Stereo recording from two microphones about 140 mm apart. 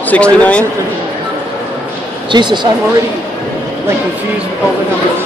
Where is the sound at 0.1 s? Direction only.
10° left (ahead or behind).